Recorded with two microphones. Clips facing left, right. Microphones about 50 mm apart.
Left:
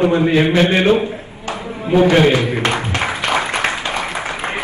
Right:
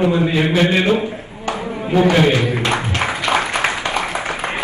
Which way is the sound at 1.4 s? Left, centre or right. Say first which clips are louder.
Right 3 dB; right.